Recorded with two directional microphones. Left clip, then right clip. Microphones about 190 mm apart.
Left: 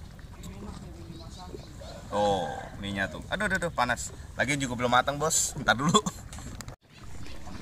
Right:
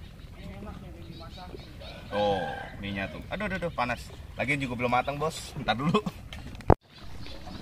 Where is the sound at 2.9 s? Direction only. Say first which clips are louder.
Left 4 dB; centre (ahead or behind).